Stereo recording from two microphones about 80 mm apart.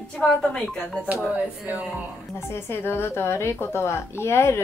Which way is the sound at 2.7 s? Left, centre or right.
Left.